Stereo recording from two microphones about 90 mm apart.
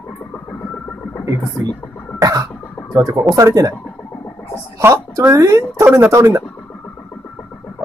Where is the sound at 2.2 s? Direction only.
40° right (ahead or behind).